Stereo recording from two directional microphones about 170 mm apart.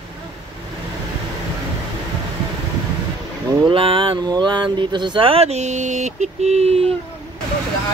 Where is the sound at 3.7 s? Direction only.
30° right (ahead or behind).